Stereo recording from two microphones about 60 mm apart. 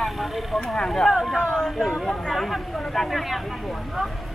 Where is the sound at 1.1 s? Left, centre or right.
Centre.